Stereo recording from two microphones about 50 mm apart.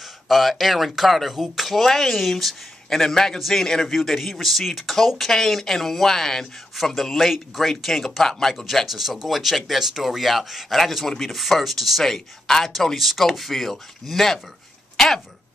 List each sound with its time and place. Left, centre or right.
0.0 s speech: centre